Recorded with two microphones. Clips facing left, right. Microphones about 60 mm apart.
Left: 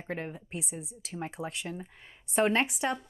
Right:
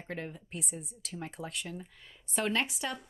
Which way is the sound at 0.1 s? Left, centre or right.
Centre.